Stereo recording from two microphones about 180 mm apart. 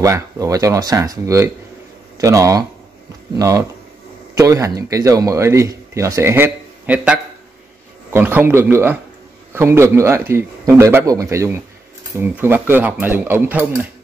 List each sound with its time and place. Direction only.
0.0 s speech: 20° right (ahead or behind)